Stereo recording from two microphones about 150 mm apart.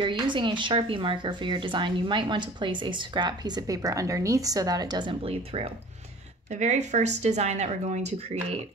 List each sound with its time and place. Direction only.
0.0 s speech: 30° right (ahead or behind); by 8.5 s 45° right (ahead or behind)